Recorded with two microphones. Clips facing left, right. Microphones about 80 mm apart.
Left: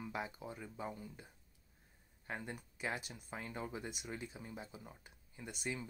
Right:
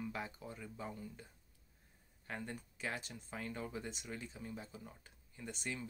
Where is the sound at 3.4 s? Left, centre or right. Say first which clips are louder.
Right 1 dB; left.